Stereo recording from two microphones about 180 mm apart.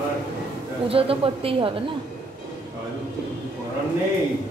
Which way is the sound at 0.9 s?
30° right (ahead or behind).